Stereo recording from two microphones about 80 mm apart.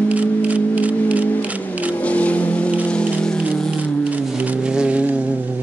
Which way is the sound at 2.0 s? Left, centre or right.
Centre.